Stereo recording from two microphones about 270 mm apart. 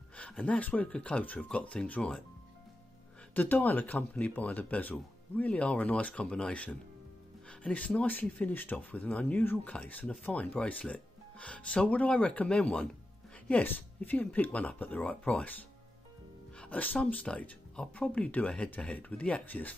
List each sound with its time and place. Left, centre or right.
0.1 s speech: centre
3.3 s speech: centre
16.5 s speech: centre